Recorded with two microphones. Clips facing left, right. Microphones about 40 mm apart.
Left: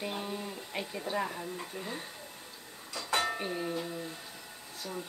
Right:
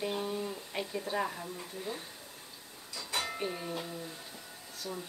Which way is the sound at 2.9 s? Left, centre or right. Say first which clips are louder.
Left 6 dB; left.